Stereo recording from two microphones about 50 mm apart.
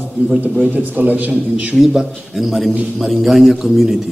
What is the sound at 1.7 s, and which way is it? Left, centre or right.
A man's voice, centre.